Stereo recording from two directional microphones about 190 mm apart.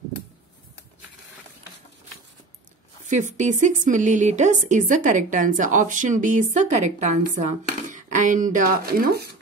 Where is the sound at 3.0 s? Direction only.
40° right (ahead or behind).